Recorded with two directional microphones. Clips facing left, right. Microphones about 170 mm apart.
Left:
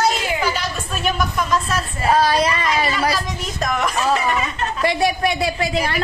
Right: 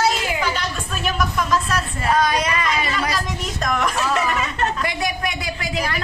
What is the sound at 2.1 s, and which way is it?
Speech, 30° left (ahead or behind).